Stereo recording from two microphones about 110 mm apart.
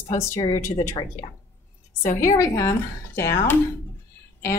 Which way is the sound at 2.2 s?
30° left (ahead or behind).